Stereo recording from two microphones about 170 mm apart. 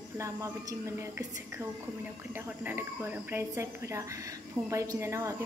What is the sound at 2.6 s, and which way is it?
A woman's voice, 10° right (ahead or behind).